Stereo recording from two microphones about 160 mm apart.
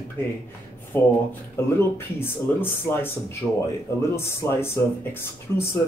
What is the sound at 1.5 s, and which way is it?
Speech, 15° left (ahead or behind).